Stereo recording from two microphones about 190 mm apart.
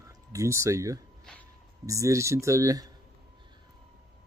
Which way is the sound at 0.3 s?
15° right (ahead or behind).